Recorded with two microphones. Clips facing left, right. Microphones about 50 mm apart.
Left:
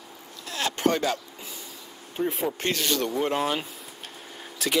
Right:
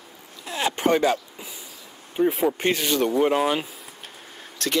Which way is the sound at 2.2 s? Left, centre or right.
Centre.